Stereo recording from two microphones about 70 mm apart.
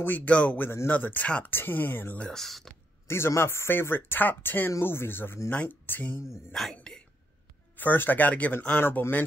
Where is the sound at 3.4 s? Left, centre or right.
Left.